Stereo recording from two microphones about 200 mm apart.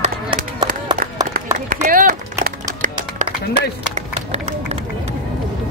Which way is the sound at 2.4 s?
40° right (ahead or behind).